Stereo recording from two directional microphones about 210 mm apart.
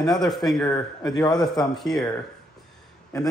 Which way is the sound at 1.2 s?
Centre (ahead or behind).